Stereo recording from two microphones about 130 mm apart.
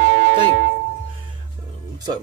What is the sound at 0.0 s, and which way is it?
Music, 90° right.